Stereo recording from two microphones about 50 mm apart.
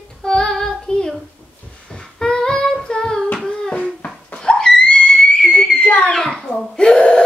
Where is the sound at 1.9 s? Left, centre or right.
Centre.